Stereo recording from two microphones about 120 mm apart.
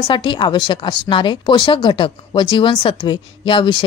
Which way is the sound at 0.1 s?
40° left (ahead or behind).